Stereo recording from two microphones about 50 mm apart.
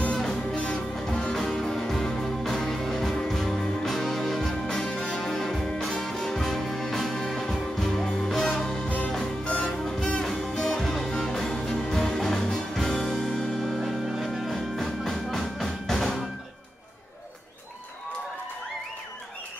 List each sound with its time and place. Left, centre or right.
0.1 s music: centre
0.9 s music: centre